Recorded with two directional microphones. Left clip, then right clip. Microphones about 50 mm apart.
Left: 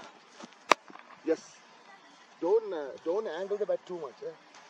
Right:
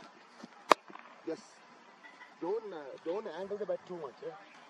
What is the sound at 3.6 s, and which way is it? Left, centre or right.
Speech, centre.